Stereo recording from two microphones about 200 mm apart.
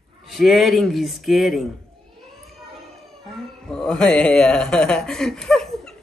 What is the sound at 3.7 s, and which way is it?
A man's voice, 5° left (ahead or behind).